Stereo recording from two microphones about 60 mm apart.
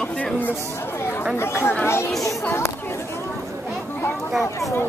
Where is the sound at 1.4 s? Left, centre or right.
Left.